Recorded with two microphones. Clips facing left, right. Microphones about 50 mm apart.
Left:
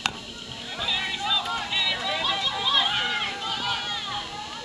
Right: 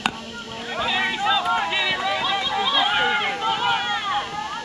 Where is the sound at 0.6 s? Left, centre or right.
Right.